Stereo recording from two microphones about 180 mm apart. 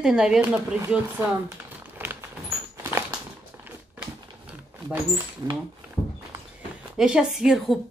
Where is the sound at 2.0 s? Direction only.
10° right (ahead or behind).